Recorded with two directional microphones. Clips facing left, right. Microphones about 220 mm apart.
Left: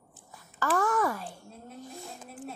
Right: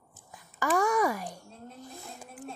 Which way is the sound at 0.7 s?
10° right (ahead or behind).